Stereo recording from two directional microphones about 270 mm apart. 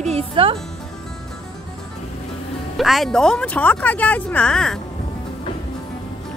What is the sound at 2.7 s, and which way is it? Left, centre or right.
Speech, centre.